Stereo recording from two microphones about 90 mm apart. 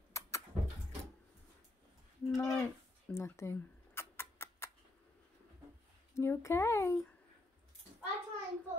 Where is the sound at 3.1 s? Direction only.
30° left (ahead or behind).